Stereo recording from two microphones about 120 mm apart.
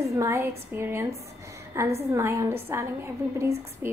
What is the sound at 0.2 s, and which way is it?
Speech, 25° right (ahead or behind).